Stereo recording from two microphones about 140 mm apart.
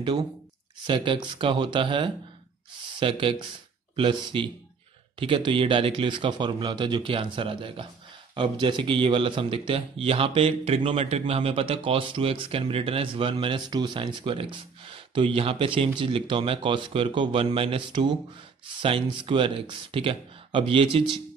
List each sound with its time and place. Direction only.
0.8 s speech: 35° right (ahead or behind)